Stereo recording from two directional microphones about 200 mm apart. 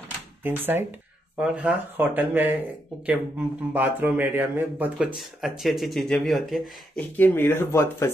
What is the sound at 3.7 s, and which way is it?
Speech, 10° right (ahead or behind).